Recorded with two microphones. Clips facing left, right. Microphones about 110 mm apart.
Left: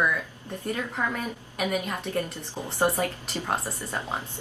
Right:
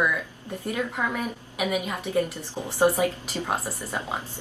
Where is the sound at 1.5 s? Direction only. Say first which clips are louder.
Right 1 dB; 10° right (ahead or behind).